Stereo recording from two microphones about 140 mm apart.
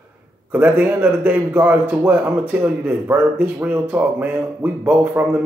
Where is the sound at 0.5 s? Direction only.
10° right (ahead or behind).